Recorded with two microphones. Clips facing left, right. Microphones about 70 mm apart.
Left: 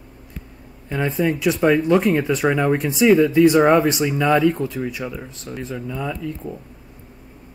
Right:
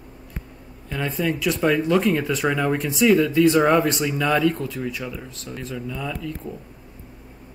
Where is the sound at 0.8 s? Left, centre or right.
Centre.